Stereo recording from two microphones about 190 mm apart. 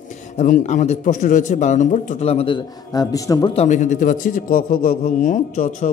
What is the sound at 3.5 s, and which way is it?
A man's voice, 40° left (ahead or behind).